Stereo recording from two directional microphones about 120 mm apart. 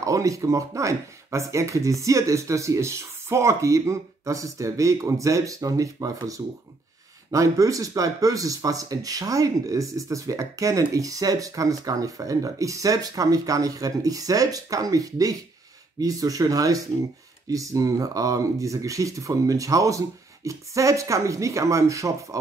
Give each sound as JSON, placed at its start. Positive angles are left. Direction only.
{"t": 0.0, "sound": "speech", "side_deg": -25}